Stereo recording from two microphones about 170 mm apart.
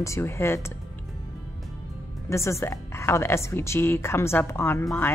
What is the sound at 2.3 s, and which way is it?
A woman's voice, 15° left (ahead or behind).